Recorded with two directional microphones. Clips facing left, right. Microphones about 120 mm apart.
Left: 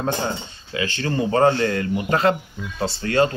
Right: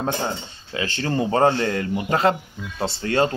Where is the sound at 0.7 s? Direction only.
30° right (ahead or behind).